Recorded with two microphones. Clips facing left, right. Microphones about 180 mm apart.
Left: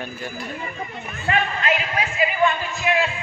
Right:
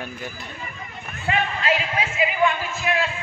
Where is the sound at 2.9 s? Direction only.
Centre (ahead or behind).